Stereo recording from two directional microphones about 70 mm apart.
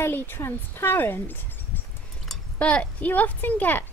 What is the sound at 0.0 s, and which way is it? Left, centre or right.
A woman's voice, left.